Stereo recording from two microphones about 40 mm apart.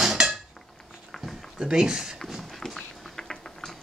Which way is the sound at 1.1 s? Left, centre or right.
Centre.